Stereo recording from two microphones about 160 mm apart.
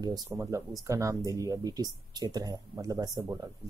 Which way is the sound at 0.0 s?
25° right (ahead or behind).